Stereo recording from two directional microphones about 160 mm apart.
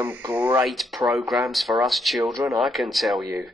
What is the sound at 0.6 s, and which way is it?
A woman's voice, centre (ahead or behind).